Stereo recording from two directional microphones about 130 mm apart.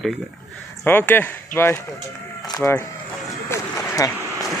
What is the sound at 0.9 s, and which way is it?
Speech, 15° left (ahead or behind).